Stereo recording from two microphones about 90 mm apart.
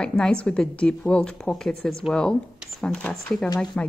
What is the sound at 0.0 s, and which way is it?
A woman's voice, 5° left (ahead or behind).